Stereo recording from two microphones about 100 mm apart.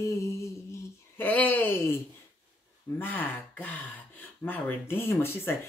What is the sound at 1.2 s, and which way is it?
Speech, 15° left (ahead or behind).